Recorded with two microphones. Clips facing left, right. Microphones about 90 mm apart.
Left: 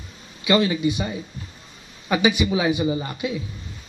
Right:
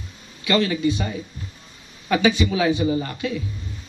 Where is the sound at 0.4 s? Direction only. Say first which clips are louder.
Left 1 dB; 20° left (ahead or behind).